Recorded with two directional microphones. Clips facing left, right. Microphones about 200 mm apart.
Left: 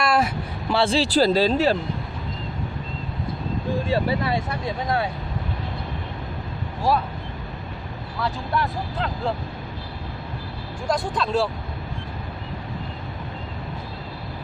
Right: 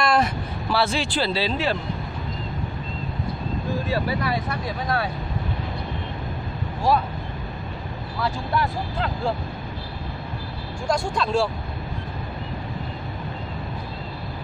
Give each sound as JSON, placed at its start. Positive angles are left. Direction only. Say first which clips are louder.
{"t": 0.0, "sound": "a sound", "louder": "even", "side_deg": 5}
{"t": 0.7, "sound": "speech", "louder": "left 3 dB", "side_deg": 25}
{"t": 3.8, "sound": "speech", "louder": "left 3 dB", "side_deg": 25}
{"t": 6.9, "sound": "speech", "louder": "right 1 dB", "side_deg": 0}
{"t": 8.2, "sound": "speech", "louder": "right 1 dB", "side_deg": 0}
{"t": 10.9, "sound": "speech", "louder": "even", "side_deg": 0}